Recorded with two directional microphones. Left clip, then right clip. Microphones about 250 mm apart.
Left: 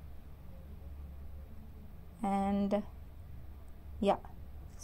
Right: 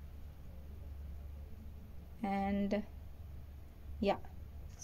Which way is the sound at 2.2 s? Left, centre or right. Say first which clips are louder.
Left 3 dB; centre.